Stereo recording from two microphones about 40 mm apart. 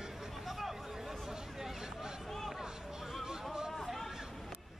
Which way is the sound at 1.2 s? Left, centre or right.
Centre.